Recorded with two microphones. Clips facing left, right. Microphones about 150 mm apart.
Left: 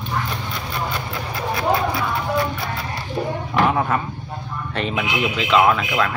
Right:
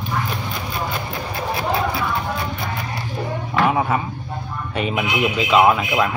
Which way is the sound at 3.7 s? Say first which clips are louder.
Right 1 dB; 5° right (ahead or behind).